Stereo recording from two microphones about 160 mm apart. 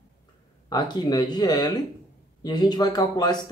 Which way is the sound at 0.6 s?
25° left (ahead or behind).